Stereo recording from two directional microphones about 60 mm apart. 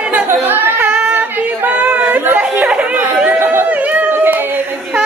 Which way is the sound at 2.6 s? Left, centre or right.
Right.